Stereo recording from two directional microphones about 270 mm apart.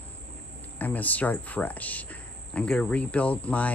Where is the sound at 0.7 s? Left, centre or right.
Centre.